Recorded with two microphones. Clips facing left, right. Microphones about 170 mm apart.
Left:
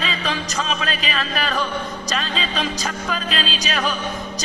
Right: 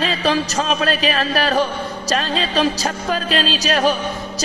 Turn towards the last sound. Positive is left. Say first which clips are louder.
# right 7 dB
turn(degrees=-35)  # may be behind; listen again after turning